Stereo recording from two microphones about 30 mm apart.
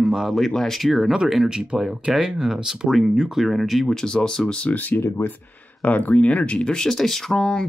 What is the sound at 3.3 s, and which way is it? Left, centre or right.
Speech, centre.